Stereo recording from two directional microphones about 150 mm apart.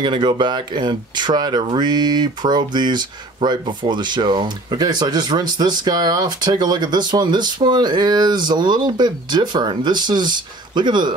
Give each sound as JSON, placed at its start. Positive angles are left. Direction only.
{"t": 0.0, "sound": "speech", "side_deg": -30}